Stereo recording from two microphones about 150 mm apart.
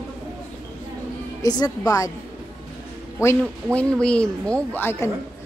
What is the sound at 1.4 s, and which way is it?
Speech, 25° left (ahead or behind).